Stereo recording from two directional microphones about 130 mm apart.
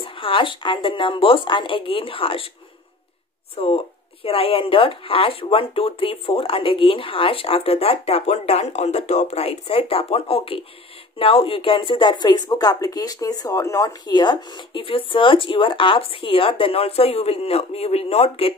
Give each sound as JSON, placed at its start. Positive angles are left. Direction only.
{"t": 0.0, "sound": "speech", "side_deg": 40}
{"t": 3.5, "sound": "speech", "side_deg": 50}